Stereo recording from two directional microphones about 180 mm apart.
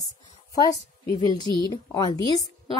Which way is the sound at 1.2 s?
25° right (ahead or behind).